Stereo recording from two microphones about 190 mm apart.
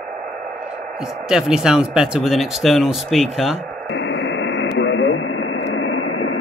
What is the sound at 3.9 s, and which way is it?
Radio, 80° left.